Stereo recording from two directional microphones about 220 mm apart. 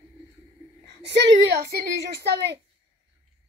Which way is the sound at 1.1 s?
50° right (ahead or behind).